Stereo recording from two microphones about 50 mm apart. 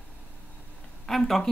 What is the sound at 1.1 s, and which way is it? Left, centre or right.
Speech, centre.